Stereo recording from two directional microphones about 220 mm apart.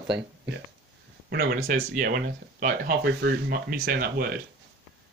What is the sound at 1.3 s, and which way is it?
Speech, 45° right (ahead or behind).